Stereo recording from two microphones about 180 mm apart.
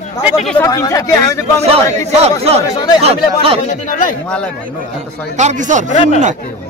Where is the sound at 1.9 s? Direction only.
35° right (ahead or behind).